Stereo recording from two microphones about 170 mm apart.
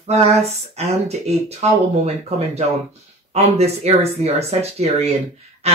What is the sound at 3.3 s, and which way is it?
Speech, 40° right (ahead or behind).